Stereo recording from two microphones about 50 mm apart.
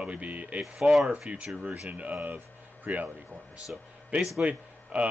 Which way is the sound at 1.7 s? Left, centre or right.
Right.